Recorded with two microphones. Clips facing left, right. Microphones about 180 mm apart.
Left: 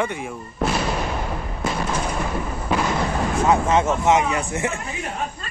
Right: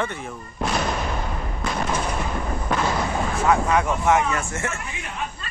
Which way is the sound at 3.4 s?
20° left (ahead or behind).